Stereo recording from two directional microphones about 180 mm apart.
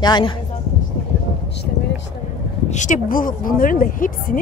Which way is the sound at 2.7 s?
45° left (ahead or behind).